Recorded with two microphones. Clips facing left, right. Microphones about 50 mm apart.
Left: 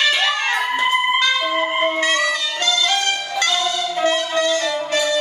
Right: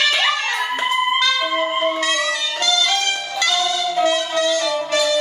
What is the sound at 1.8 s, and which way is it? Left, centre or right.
Music, left.